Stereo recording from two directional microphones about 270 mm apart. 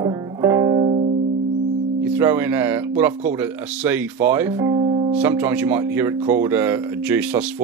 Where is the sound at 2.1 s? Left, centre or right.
Centre.